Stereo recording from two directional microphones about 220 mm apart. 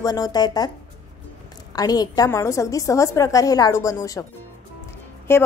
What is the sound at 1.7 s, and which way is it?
A woman's voice, 15° left (ahead or behind).